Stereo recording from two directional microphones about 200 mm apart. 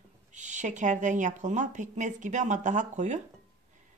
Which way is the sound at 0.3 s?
35° right (ahead or behind).